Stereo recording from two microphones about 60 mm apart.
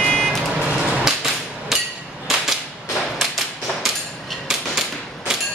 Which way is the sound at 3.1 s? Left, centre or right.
Centre.